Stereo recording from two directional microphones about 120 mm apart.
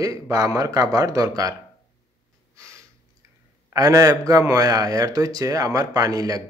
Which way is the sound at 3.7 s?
30° right (ahead or behind).